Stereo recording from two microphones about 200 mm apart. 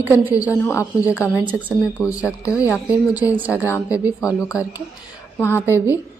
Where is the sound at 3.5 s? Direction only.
15° left (ahead or behind).